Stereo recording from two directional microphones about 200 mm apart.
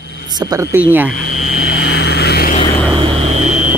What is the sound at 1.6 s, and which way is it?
Vehicle, 55° left (ahead or behind).